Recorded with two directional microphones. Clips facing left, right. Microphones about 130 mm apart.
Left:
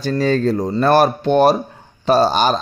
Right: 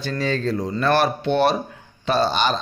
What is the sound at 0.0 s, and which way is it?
A man's voice, 45° left (ahead or behind).